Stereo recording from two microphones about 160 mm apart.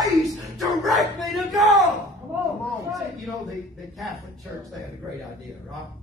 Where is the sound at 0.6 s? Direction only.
Centre (ahead or behind).